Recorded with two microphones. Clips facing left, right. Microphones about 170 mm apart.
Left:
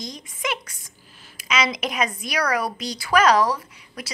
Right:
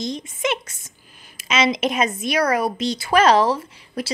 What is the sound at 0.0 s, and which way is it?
A woman's voice, 25° right (ahead or behind).